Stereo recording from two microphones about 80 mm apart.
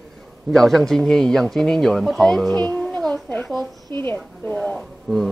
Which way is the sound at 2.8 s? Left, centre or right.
Centre.